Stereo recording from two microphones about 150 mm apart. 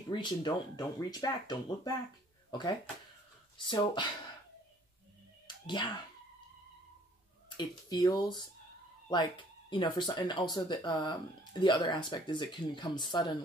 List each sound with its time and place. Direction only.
0.1 s speech: 30° left (ahead or behind)
5.7 s speech: 30° left (ahead or behind)
7.4 s speech: 30° left (ahead or behind)